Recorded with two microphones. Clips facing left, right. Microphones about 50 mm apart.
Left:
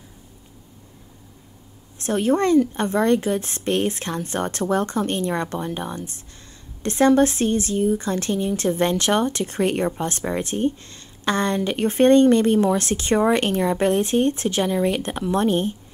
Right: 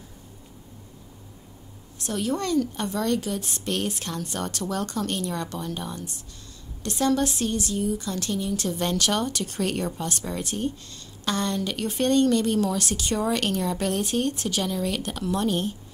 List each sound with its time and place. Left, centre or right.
2.0 s speech: left